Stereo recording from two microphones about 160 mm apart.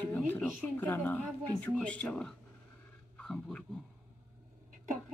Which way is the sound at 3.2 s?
5° left (ahead or behind).